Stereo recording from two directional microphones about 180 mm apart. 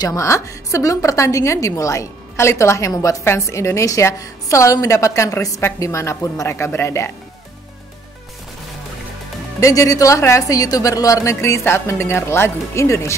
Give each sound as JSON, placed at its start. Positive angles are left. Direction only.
{"t": 0.0, "sound": "a woman's voice", "side_deg": 20}
{"t": 9.6, "sound": "a woman's voice", "side_deg": 20}